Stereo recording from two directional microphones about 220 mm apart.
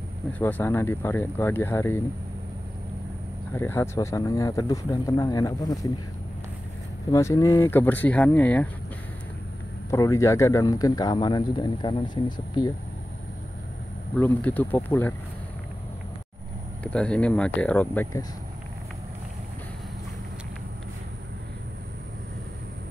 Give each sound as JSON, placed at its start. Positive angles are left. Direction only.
{"t": 0.3, "sound": "speech", "side_deg": 10}
{"t": 3.5, "sound": "speech", "side_deg": 10}
{"t": 7.1, "sound": "speech", "side_deg": 15}
{"t": 9.8, "sound": "speech", "side_deg": 15}
{"t": 14.1, "sound": "speech", "side_deg": 5}
{"t": 16.8, "sound": "speech", "side_deg": 5}